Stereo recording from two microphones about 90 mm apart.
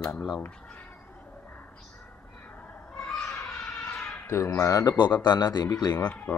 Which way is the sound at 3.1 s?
25° left (ahead or behind).